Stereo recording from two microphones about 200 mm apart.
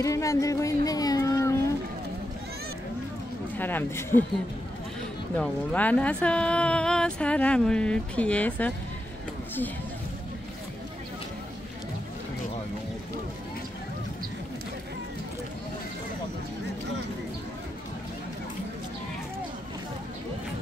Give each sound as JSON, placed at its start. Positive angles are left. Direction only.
{"t": 0.0, "sound": "speech", "side_deg": 15}
{"t": 3.5, "sound": "speech", "side_deg": 10}
{"t": 5.4, "sound": "speech", "side_deg": 5}